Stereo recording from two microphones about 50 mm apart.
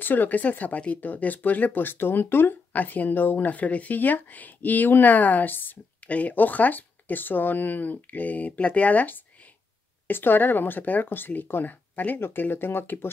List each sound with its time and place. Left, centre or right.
0.0 s speech: left
6.0 s speech: left